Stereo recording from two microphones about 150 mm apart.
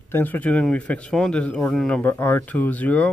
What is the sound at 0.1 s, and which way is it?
Speech, 10° left (ahead or behind).